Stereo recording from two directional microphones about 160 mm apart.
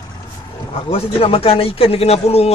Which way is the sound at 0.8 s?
35° left (ahead or behind).